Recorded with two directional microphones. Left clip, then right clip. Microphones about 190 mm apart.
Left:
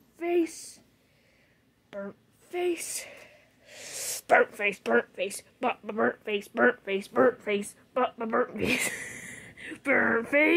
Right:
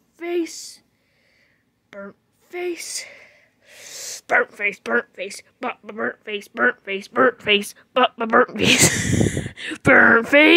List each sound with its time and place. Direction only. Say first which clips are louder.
0.2 s a sound: right 3 dB; 15° right (ahead or behind)
1.9 s speech: right 2 dB; 15° right (ahead or behind)
7.2 s speech: right 7 dB; 25° right (ahead or behind)
7.9 s a woman's voice: right 11 dB; 50° right (ahead or behind)
9.0 s speech: right 17 dB; 35° right (ahead or behind)